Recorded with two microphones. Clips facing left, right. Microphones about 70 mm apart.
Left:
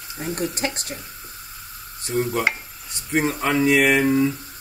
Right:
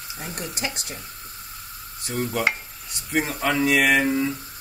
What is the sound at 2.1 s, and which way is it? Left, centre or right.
Speech, centre.